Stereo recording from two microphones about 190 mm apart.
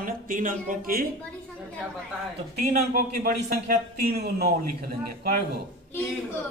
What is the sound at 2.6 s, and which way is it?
A man's voice, 50° right (ahead or behind).